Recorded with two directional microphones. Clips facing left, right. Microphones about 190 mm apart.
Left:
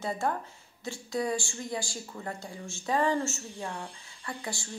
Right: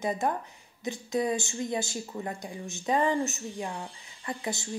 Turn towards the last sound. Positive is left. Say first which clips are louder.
# right 4 dB
turn(degrees=-20)  # may be behind; listen again after turning